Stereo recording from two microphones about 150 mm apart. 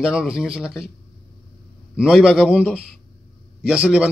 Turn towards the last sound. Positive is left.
turn(degrees=-5)  # may be behind; listen again after turning